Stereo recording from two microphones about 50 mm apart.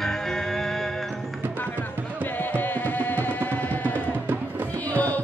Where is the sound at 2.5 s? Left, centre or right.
Left.